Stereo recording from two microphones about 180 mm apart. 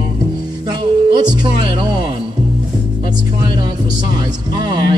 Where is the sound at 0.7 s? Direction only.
25° right (ahead or behind).